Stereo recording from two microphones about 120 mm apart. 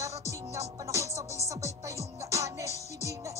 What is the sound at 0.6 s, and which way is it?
Music, 25° right (ahead or behind).